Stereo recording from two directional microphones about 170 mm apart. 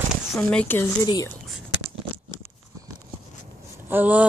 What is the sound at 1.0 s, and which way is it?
Speech, 25° left (ahead or behind).